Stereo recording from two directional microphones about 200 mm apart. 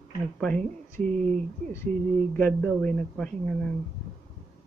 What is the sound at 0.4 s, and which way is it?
Speech, 5° left (ahead or behind).